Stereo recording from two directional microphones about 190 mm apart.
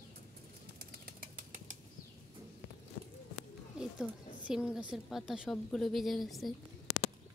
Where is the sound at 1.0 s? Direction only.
45° right (ahead or behind).